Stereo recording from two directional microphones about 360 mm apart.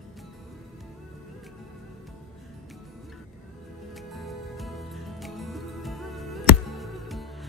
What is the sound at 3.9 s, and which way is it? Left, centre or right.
Music, centre.